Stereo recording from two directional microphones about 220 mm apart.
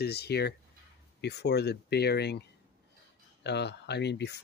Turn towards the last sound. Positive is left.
turn(degrees=50)  # may be behind; listen again after turning